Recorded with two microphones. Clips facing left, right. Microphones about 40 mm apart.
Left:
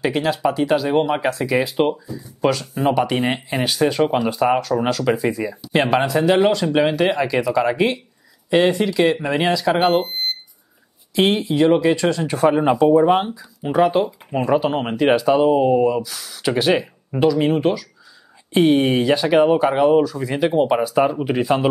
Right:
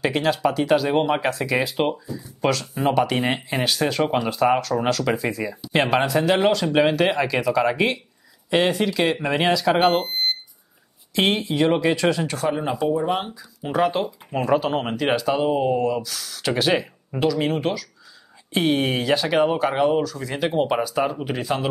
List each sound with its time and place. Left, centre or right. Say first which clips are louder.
0.0 s speech: left 1 dB; centre
11.1 s speech: left 4 dB; centre
12.3 s speech: left 8 dB; left
13.2 s speech: left 6 dB; centre